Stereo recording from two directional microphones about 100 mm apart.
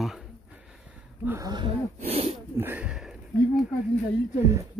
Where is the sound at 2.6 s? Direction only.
20° right (ahead or behind).